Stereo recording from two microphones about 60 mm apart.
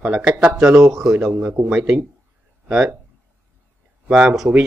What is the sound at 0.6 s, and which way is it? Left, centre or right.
Speech, centre.